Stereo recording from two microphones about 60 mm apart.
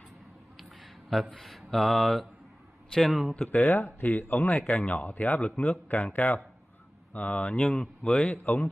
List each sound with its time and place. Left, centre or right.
1.1 s speech: centre
3.4 s speech: left
4.6 s speech: centre
4.8 s speech: left
7.6 s speech: centre